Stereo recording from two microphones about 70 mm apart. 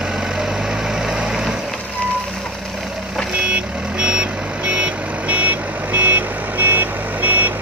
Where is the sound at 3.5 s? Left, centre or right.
Centre.